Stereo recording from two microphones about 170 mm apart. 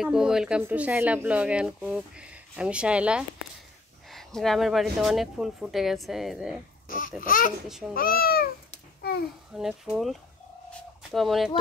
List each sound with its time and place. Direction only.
0.0 s speech: 5° right (ahead or behind)
6.9 s babbling: 55° left (ahead or behind)
7.6 s speech: centre (ahead or behind)
7.9 s a child's voice: 60° left (ahead or behind)
9.5 s speech: 5° right (ahead or behind)